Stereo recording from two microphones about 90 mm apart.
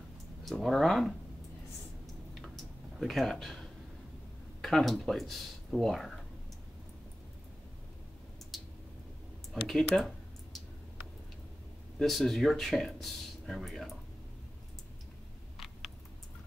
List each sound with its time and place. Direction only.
0.5 s speech: centre (ahead or behind)
2.4 s tick-tock: centre (ahead or behind)
4.6 s speech: centre (ahead or behind)
8.5 s a sound: centre (ahead or behind)
12.0 s speech: centre (ahead or behind)
15.5 s a sound: centre (ahead or behind)